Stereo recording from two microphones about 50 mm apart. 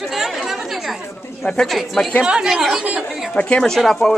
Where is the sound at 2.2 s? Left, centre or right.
Centre.